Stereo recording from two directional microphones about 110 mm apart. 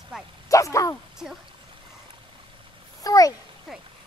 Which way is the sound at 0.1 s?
5° right (ahead or behind).